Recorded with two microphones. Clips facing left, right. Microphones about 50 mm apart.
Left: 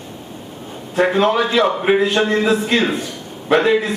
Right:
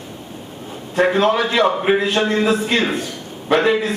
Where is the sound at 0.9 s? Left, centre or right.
Centre.